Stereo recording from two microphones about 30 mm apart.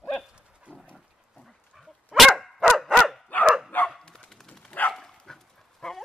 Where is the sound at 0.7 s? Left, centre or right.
Left.